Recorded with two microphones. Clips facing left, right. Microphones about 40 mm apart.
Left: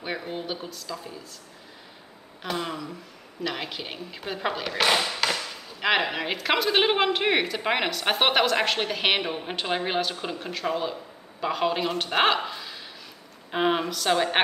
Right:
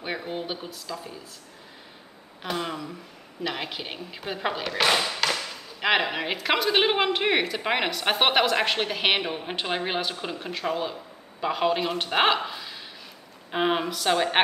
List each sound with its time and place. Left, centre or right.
0.0 s speech: centre
2.4 s a man's voice: centre